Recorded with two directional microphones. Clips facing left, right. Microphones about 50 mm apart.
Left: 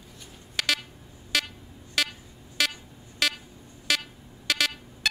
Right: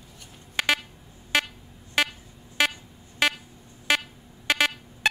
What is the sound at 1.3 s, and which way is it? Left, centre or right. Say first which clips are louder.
Vehicle: right 4 dB; right.